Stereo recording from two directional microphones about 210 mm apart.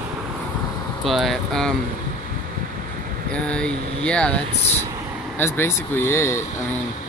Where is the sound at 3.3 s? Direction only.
5° left (ahead or behind).